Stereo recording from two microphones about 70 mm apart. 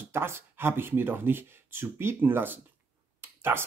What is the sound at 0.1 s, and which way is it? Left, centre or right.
Speech, right.